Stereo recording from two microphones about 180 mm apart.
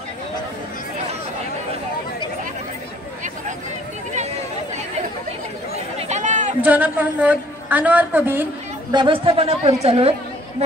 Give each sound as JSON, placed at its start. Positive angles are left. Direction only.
{"t": 5.9, "sound": "chatter", "side_deg": -40}
{"t": 6.6, "sound": "a woman's voice", "side_deg": -10}
{"t": 8.9, "sound": "a woman's voice", "side_deg": -30}